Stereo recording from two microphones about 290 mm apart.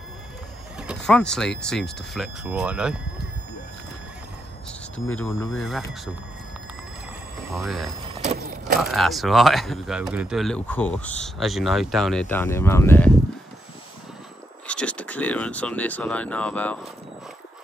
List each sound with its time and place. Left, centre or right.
0.7 s vehicle: centre
1.6 s speech: centre
5.1 s speech: centre
7.5 s speech: centre
8.1 s vehicle: right
8.9 s speech: centre
14.7 s speech: centre